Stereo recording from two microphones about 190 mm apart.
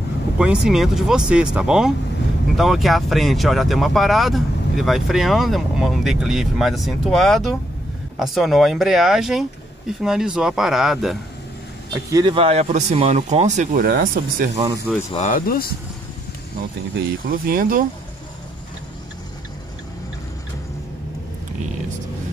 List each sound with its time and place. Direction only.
0.4 s speech: 5° right (ahead or behind)
12.1 s speech: 25° right (ahead or behind); by 14.5 s 50° right (ahead or behind)
15.0 s speech: 40° left (ahead or behind)
17.3 s speech: 50° right (ahead or behind)